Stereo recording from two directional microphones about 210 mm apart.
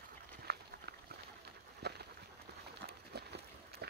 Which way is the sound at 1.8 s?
50° right (ahead or behind).